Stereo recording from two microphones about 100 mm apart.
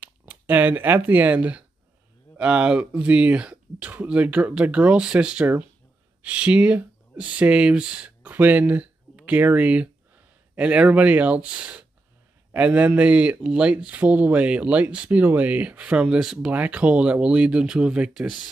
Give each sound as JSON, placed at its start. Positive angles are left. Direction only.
{"t": 0.0, "sound": "speech", "side_deg": -15}